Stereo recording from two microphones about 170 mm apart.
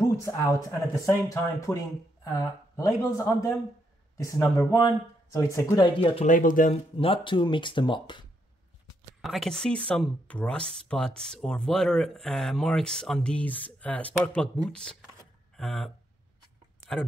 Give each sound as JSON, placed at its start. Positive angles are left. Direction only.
{"t": 0.2, "sound": "a man's voice", "side_deg": 20}
{"t": 5.9, "sound": "speech", "side_deg": 35}
{"t": 6.2, "sound": "speech", "side_deg": 50}
{"t": 7.0, "sound": "speech", "side_deg": 30}
{"t": 9.2, "sound": "speech", "side_deg": 0}